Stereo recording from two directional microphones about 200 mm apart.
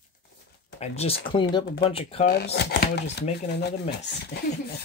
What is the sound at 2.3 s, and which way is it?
Speech, 55° left (ahead or behind).